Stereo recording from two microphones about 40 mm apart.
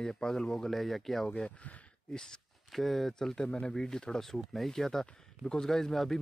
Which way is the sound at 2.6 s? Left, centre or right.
Centre.